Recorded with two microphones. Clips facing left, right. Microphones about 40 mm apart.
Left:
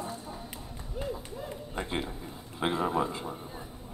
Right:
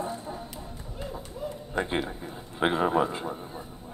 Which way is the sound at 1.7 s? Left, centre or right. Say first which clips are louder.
Right 5 dB; right.